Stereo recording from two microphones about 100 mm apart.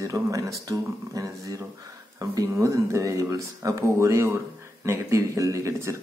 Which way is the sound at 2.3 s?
35° right (ahead or behind).